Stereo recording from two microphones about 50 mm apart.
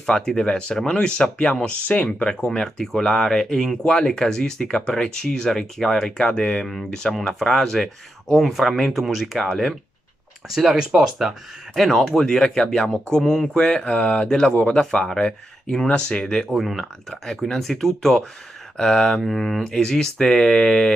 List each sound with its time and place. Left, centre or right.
0.0 s speech: centre
9.5 s speech: centre
10.5 s speech: centre
11.7 s speech: centre
16.5 s speech: centre